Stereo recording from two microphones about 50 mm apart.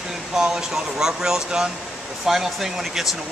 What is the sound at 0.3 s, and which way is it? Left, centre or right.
Speech, centre.